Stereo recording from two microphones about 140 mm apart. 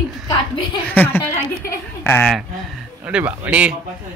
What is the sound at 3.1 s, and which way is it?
Speech, 10° right (ahead or behind).